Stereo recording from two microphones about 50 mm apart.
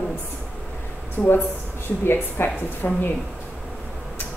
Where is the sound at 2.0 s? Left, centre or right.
Left.